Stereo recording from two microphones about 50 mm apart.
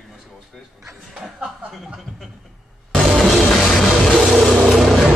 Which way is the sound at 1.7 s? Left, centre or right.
Centre.